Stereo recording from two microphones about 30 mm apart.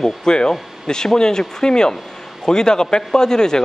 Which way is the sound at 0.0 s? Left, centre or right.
Left.